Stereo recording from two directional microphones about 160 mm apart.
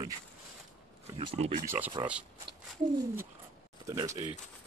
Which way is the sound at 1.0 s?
35° right (ahead or behind).